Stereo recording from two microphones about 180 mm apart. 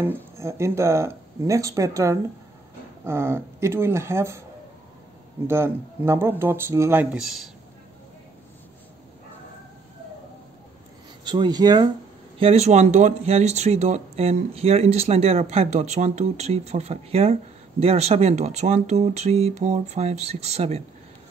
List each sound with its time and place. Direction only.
0.0 s speech: 15° right (ahead or behind)
5.5 s speech: 15° right (ahead or behind)
11.2 s speech: 25° right (ahead or behind)
12.4 s speech: 35° right (ahead or behind)